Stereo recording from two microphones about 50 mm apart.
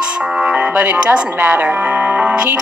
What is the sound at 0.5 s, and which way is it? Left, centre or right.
A woman's voice, right.